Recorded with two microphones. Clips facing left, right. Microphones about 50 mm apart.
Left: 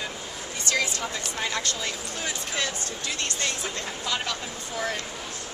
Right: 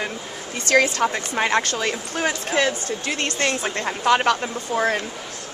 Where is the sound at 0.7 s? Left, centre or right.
Right.